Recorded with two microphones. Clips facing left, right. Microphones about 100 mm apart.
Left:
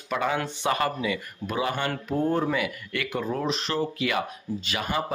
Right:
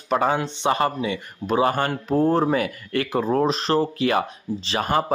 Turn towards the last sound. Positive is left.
turn(degrees=-45)  # may be behind; listen again after turning